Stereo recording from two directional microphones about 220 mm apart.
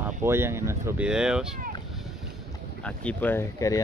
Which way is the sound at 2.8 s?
5° left (ahead or behind).